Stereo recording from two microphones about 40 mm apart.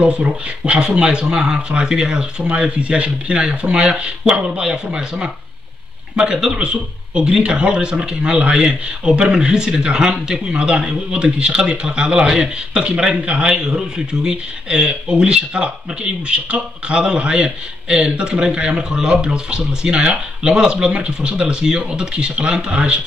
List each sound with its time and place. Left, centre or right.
0.0 s speech: right